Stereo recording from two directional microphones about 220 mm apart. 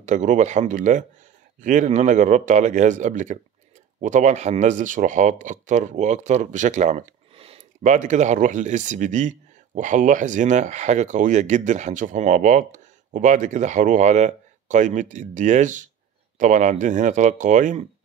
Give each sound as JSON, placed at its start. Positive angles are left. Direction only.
{"t": 0.0, "sound": "speech", "side_deg": -35}